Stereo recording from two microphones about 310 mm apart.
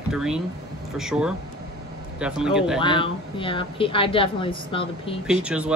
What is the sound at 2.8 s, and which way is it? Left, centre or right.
A woman's voice, centre.